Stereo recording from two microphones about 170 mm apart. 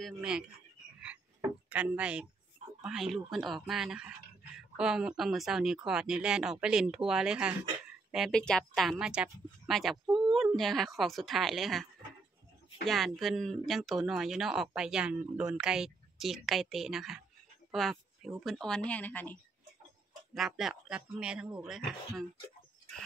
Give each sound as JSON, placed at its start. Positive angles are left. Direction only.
{"t": 0.0, "sound": "speech", "side_deg": -5}
{"t": 1.7, "sound": "speech", "side_deg": -10}
{"t": 10.0, "sound": "a sound", "side_deg": -30}
{"t": 10.3, "sound": "speech", "side_deg": 0}
{"t": 20.3, "sound": "speech", "side_deg": 0}